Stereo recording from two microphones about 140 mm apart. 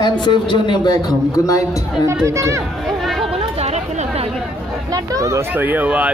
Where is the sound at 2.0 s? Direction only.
20° right (ahead or behind).